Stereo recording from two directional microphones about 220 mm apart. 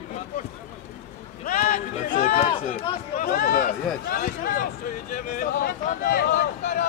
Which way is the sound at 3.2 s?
45° left (ahead or behind).